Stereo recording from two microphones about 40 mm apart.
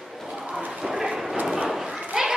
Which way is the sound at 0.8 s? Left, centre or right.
Centre.